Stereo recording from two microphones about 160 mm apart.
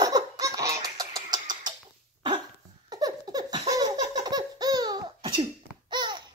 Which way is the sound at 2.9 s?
25° right (ahead or behind).